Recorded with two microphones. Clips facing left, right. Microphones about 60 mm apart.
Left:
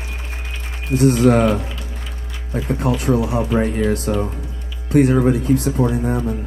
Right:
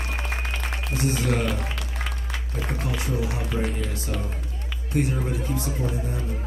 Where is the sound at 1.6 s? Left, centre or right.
Right.